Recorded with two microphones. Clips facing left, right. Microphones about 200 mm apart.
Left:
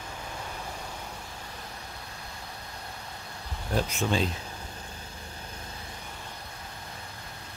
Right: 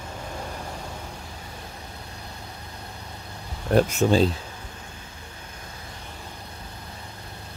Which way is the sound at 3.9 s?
40° right (ahead or behind).